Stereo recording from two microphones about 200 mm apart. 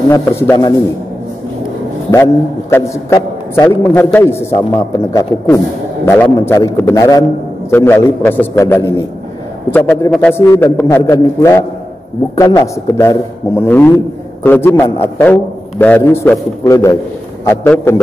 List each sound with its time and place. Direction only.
0.4 s a man's voice: 15° left (ahead or behind)
2.0 s a man's voice: 15° left (ahead or behind)